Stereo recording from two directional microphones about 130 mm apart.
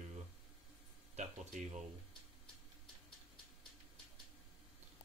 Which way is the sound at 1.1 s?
60° right (ahead or behind).